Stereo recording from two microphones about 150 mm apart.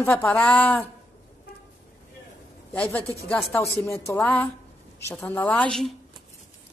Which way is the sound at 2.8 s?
10° left (ahead or behind).